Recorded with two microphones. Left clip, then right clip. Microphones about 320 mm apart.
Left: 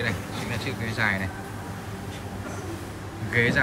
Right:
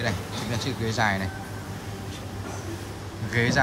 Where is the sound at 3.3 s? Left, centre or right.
Centre.